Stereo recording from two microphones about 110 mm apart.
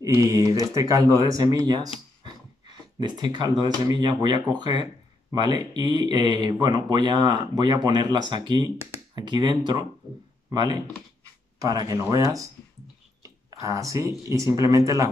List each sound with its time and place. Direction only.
0.0 s speech: 30° right (ahead or behind)
2.2 s a sound: 40° right (ahead or behind)
3.6 s speech: 40° right (ahead or behind)
13.5 s speech: 30° right (ahead or behind)